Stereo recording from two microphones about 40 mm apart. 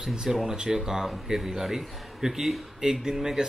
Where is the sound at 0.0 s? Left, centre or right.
Centre.